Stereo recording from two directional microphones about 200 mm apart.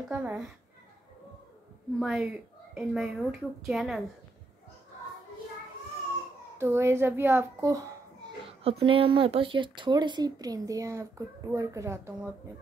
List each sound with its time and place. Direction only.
0.1 s a child's voice: 10° right (ahead or behind)
2.0 s a woman's voice: 5° right (ahead or behind)
6.6 s a child's voice: 15° right (ahead or behind)
8.5 s speech: 30° right (ahead or behind)